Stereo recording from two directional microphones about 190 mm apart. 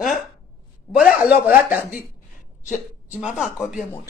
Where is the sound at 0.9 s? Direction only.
5° right (ahead or behind).